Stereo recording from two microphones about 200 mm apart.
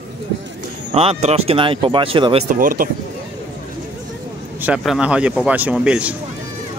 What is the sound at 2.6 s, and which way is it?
Speech, 45° right (ahead or behind).